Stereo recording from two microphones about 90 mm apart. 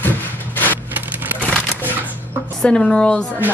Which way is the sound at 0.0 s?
20° left (ahead or behind).